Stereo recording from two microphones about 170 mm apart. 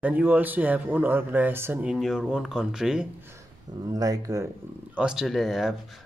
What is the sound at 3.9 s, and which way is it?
Speech, 20° right (ahead or behind).